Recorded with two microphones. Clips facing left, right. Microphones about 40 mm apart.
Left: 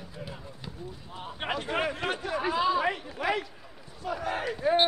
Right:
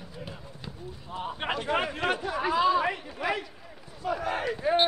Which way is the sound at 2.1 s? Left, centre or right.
Centre.